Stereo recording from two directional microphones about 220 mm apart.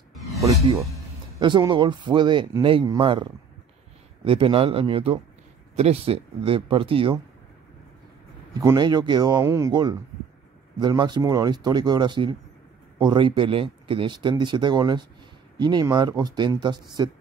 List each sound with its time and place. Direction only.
0.4 s speech: 15° right (ahead or behind)
8.5 s speech: 15° right (ahead or behind)